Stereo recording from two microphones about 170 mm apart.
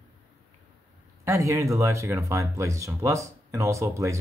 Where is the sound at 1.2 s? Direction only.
15° right (ahead or behind).